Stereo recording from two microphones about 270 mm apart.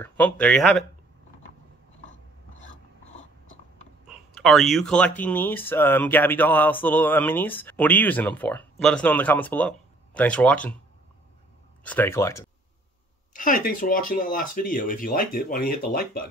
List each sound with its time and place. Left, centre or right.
0.0 s speech: centre
4.1 s speech: centre
11.8 s speech: centre
13.3 s speech: left